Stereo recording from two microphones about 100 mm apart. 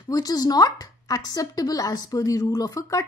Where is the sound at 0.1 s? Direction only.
40° left (ahead or behind).